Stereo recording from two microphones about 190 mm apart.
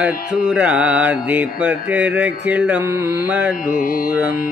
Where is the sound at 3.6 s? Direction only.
50° left (ahead or behind).